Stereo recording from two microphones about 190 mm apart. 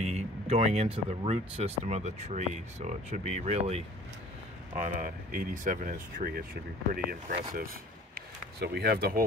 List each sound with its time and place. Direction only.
0.0 s speech: 35° right (ahead or behind)
4.7 s speech: 45° right (ahead or behind)
8.5 s speech: 55° right (ahead or behind)